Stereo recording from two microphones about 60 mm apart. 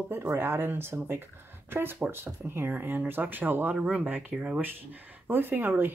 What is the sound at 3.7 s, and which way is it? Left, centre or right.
Speech, centre.